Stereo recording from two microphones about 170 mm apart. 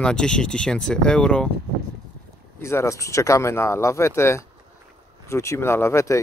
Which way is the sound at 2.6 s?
15° left (ahead or behind).